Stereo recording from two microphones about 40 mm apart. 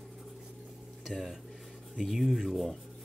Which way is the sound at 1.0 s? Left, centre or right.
Centre.